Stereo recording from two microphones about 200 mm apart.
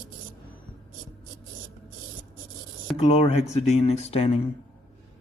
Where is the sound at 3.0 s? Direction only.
30° left (ahead or behind).